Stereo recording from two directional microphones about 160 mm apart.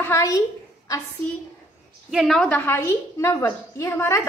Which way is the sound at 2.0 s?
Centre (ahead or behind).